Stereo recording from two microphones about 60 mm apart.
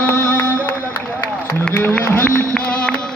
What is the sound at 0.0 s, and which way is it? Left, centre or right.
Music, left.